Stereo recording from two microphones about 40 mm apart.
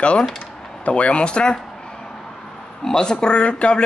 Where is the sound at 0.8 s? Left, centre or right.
Left.